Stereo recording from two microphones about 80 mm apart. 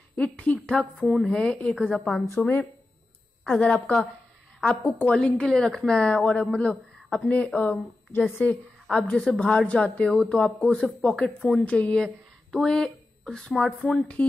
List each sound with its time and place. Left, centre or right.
0.1 s speech: centre
0.7 s a woman's voice: centre
10.0 s speech: centre